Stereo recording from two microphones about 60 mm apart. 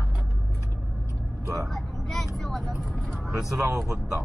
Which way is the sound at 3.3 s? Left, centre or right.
Right.